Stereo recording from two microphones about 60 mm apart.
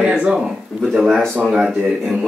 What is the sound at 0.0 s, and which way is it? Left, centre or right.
Speech, centre.